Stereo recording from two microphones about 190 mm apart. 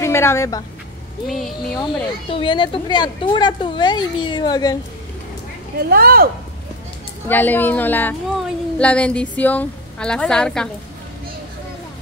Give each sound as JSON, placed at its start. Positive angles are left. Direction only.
{"t": 0.0, "sound": "a woman's voice", "side_deg": 15}
{"t": 1.2, "sound": "a woman's voice", "side_deg": 0}
{"t": 1.8, "sound": "speech", "side_deg": 25}
{"t": 5.8, "sound": "speech", "side_deg": -50}
{"t": 7.2, "sound": "a woman's voice", "side_deg": 10}